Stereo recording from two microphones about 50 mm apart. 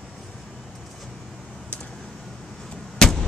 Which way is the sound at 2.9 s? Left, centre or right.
Centre.